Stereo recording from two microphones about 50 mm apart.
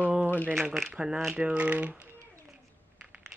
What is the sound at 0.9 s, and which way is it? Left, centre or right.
Speech, centre.